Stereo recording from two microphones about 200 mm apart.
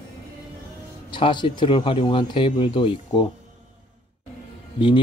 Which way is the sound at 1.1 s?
25° left (ahead or behind).